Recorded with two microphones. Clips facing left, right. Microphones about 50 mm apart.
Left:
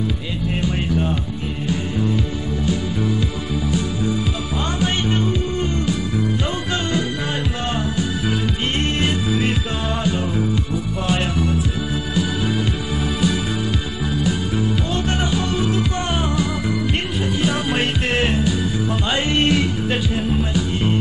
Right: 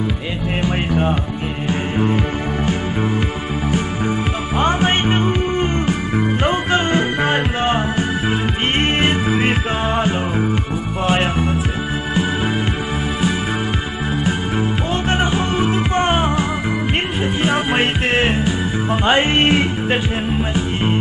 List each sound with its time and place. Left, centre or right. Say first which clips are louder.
0.6 s music: right 3 dB; right
4.6 s music: right 7 dB; right
14.2 s music: right 1 dB; right